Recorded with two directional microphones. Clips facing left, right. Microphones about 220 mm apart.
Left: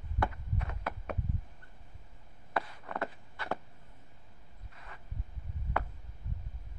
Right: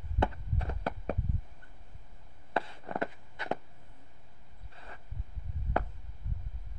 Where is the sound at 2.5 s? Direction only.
25° right (ahead or behind).